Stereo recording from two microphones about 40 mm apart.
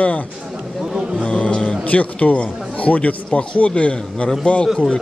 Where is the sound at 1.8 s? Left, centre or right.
Left.